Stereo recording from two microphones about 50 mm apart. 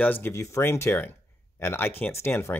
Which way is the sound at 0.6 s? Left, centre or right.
Left.